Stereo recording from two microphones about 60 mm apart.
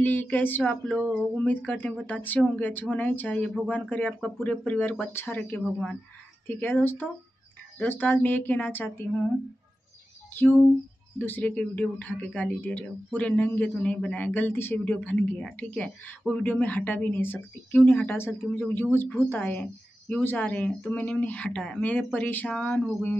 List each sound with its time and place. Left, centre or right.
0.0 s speech: left
10.3 s speech: left
14.5 s speech: left
14.9 s speech: left